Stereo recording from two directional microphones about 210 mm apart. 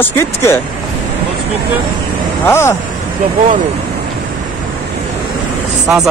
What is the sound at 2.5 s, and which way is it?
Speech, 10° left (ahead or behind).